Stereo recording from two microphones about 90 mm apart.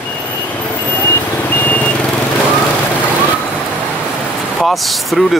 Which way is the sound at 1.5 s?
20° left (ahead or behind).